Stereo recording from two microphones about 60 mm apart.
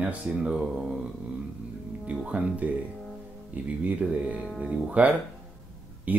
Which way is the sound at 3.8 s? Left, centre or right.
Right.